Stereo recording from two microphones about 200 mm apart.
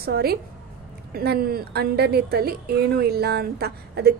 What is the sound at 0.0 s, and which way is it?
Speech, 50° right (ahead or behind).